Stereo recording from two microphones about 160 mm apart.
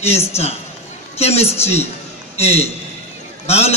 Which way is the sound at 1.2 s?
40° left (ahead or behind).